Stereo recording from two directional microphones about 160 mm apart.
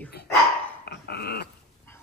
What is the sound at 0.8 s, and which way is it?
Dog, 90° left.